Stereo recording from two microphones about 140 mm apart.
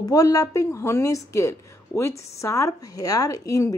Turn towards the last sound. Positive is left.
turn(degrees=25)  # may be behind; listen again after turning